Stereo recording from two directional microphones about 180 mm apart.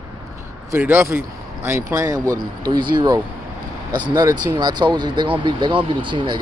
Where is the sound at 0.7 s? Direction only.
10° right (ahead or behind).